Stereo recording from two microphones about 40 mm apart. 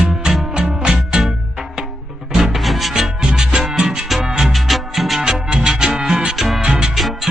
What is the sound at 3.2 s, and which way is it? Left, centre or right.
Music, centre.